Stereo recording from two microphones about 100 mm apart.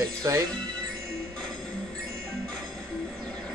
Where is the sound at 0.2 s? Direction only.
35° right (ahead or behind).